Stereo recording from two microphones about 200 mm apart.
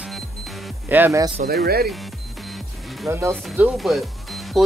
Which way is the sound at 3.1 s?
15° right (ahead or behind).